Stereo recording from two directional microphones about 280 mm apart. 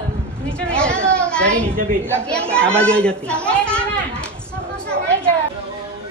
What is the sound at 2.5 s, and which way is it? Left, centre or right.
A child's voice, centre.